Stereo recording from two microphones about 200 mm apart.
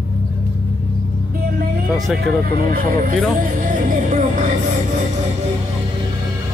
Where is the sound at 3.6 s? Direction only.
40° right (ahead or behind).